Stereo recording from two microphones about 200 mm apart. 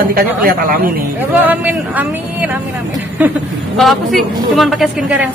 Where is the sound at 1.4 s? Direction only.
10° right (ahead or behind).